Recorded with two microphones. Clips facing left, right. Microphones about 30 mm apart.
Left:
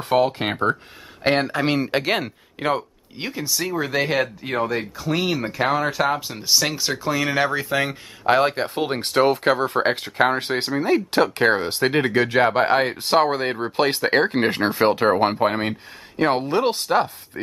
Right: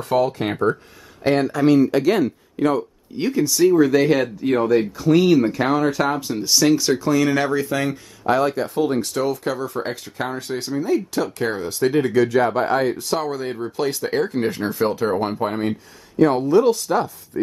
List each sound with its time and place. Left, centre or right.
0.1 s speech: left
3.3 s speech: centre
7.7 s speech: left
8.4 s speech: left